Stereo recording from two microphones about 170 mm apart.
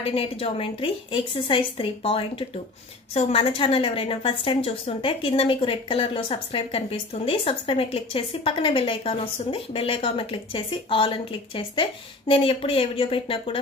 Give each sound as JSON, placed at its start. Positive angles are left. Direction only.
{"t": 0.0, "sound": "a woman's voice", "side_deg": 35}